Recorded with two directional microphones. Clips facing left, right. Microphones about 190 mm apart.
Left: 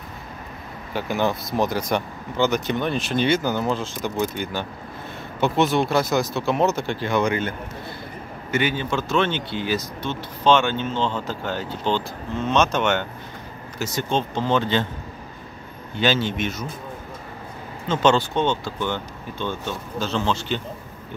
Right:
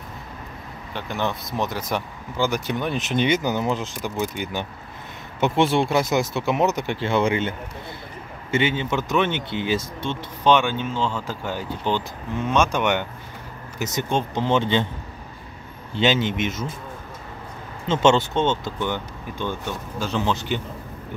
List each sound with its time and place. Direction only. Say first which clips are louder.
0.9 s speech: left 4 dB; 5° left (ahead or behind); by 4.5 s 15° right (ahead or behind)
5.4 s speech: even; 25° right (ahead or behind)
10.5 s speech: even; 10° right (ahead or behind)
15.9 s speech: right 1 dB; 20° right (ahead or behind)
17.8 s speech: right 1 dB; 25° right (ahead or behind)